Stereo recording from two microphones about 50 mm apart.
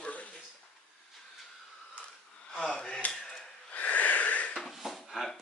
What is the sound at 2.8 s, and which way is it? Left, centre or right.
Speech, left.